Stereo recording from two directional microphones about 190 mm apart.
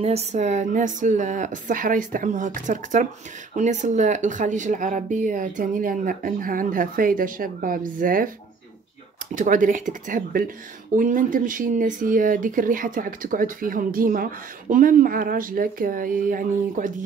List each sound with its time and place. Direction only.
0.0 s speech: 35° right (ahead or behind)
9.3 s speech: 45° right (ahead or behind)